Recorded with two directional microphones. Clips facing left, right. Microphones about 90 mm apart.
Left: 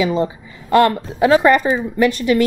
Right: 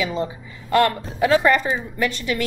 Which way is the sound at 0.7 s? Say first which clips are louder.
Left 5 dB; 25° left (ahead or behind).